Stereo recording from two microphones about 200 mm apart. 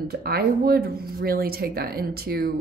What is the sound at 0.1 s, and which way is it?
A woman's voice, 50° right (ahead or behind).